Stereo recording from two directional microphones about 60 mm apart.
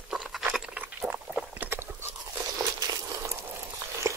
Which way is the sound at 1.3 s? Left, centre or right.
Right.